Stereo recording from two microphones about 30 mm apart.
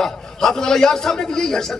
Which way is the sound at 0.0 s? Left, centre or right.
Centre.